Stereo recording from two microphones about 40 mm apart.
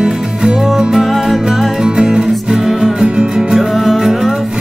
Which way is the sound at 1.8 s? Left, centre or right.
Centre.